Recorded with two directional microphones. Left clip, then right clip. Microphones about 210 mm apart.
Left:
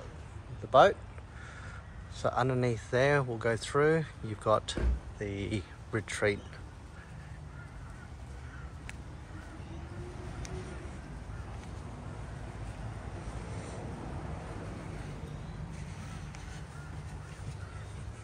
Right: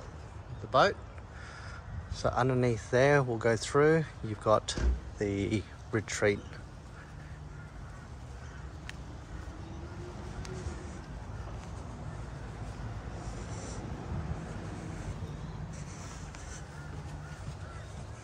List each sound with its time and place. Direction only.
0.7 s speech: 5° right (ahead or behind)
2.1 s speech: 15° right (ahead or behind)